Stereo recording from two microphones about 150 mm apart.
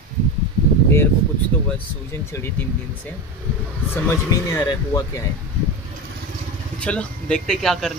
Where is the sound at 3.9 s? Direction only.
20° left (ahead or behind).